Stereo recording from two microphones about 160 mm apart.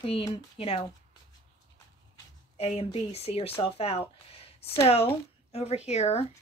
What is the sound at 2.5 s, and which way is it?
Speech, 40° left (ahead or behind).